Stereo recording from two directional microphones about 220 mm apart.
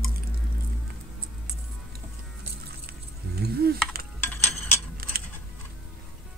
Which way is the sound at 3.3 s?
45° right (ahead or behind).